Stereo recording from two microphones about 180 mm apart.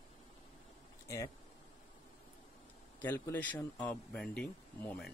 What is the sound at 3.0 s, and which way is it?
Speech, 10° left (ahead or behind).